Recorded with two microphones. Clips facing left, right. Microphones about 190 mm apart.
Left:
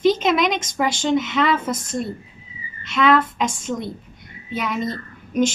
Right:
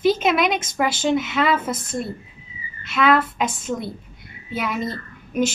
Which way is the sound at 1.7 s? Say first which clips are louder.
Left 1 dB; 55° right (ahead or behind).